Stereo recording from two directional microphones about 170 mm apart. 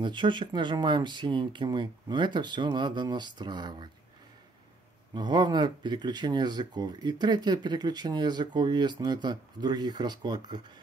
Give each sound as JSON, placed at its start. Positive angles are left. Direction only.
{"t": 0.0, "sound": "speech", "side_deg": -25}
{"t": 5.1, "sound": "speech", "side_deg": -25}